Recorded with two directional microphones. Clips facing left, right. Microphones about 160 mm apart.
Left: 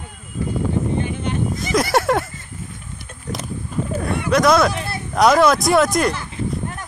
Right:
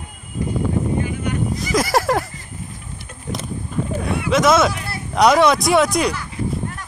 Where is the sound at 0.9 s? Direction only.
30° left (ahead or behind).